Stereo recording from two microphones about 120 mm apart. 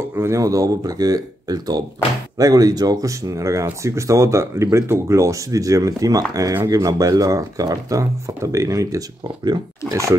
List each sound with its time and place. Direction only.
0.1 s speech: 25° right (ahead or behind)